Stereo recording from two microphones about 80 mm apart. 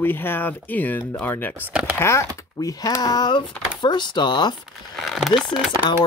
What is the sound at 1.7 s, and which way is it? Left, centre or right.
Speech, centre.